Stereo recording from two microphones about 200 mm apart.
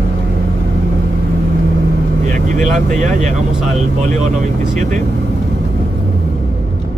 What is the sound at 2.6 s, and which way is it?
Speech, 40° right (ahead or behind).